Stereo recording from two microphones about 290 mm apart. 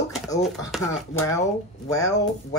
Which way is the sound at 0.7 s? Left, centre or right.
Centre.